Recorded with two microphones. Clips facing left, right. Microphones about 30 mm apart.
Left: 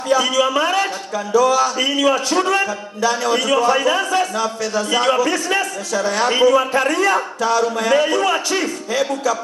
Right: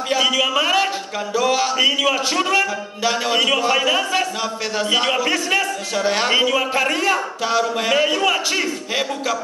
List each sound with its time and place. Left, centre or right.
0.1 s a man's voice: right
6.7 s a man's voice: right